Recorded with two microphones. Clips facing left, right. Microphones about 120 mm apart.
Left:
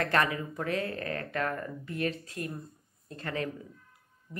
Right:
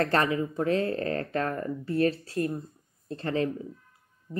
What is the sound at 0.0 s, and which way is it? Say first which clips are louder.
Speech: right 3 dB; 30° right (ahead or behind).